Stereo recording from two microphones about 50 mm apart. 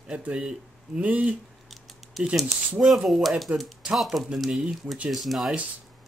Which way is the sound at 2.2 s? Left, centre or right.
Centre.